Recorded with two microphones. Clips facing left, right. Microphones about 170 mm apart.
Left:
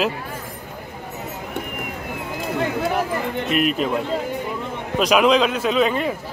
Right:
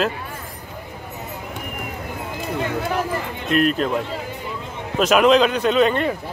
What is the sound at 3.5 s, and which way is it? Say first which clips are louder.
Speech: right 3 dB; 5° left (ahead or behind).